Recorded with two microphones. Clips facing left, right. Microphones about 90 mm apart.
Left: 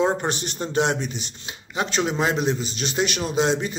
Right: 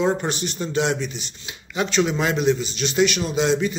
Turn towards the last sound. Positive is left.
turn(degrees=40)  # may be behind; listen again after turning